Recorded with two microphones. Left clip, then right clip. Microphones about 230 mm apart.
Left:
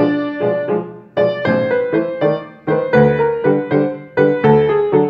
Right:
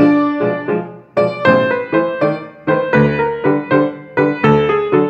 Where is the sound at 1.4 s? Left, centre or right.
Right.